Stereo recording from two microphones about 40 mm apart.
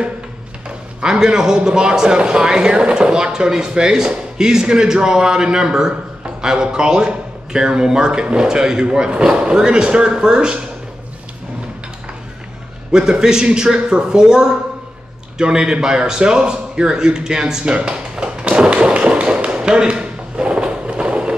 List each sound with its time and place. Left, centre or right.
1.0 s a man's voice: centre
12.9 s a man's voice: centre
15.3 s a sound: centre